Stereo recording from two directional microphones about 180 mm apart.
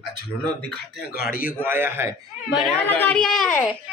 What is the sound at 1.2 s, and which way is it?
Speech, 50° left (ahead or behind).